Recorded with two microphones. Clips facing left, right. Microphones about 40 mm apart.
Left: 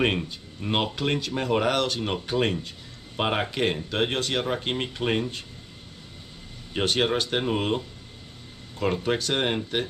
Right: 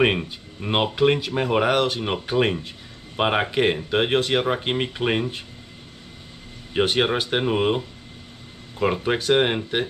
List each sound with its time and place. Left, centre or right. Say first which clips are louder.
0.0 s speech: right 4 dB; centre
6.7 s speech: right 3 dB; centre